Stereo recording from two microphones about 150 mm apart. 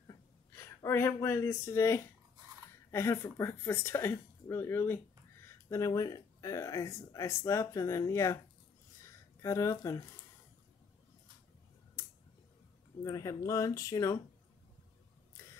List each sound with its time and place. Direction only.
0.6 s speech: 15° left (ahead or behind)
9.0 s a sound: 20° left (ahead or behind)
13.0 s speech: 20° left (ahead or behind)